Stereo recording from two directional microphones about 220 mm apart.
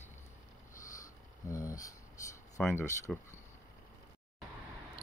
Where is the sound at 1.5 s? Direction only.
15° left (ahead or behind).